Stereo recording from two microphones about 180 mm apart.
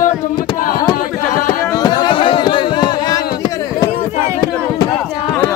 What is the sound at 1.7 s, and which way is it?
Music, 25° left (ahead or behind).